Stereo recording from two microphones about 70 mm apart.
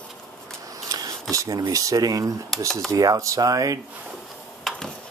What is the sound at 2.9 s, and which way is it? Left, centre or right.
Speech, right.